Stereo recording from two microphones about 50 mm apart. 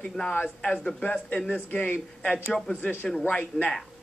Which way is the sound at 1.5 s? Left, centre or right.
Left.